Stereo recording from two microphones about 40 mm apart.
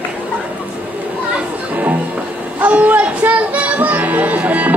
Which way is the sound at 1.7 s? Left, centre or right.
Right.